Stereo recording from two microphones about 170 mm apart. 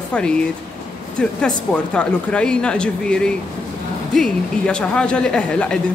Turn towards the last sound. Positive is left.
turn(degrees=5)  # may be behind; listen again after turning